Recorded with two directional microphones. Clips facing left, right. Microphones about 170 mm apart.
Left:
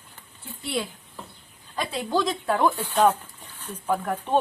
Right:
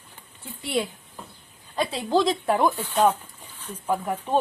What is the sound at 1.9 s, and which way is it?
Speech, 30° right (ahead or behind).